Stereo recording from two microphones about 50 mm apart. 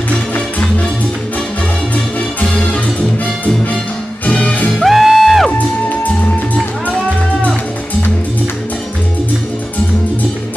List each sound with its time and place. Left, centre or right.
2.5 s music: left
4.3 s music: left
4.7 s music: centre